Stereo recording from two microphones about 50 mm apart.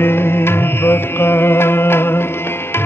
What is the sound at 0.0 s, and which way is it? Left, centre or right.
Music, left.